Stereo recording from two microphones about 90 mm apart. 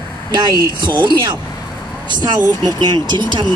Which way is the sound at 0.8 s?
55° right (ahead or behind).